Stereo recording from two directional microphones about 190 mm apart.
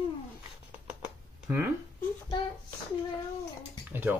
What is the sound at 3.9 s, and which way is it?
Speech, 10° right (ahead or behind).